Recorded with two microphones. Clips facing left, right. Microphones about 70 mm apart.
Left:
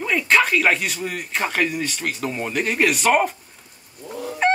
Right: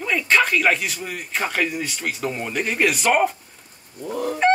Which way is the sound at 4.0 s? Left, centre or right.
Right.